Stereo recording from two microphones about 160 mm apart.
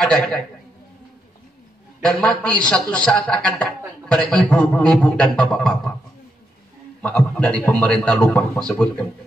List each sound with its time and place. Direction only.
0.0 s a man's voice: 5° left (ahead or behind)
2.0 s a man's voice: 5° left (ahead or behind)
7.0 s a man's voice: 10° left (ahead or behind)